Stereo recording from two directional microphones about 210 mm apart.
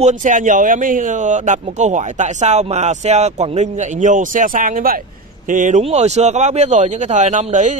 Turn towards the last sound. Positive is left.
turn(degrees=-35)  # may be behind; listen again after turning